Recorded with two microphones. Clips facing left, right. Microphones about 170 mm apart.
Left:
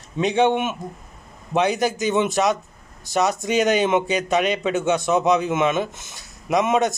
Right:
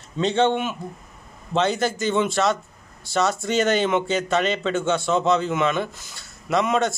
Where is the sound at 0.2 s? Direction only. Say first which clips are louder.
Left 1 dB; 15° left (ahead or behind).